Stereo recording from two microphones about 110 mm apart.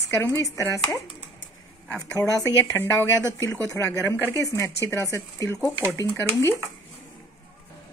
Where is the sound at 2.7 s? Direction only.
20° left (ahead or behind).